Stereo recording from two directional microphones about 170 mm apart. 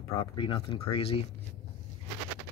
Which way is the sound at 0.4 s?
30° left (ahead or behind).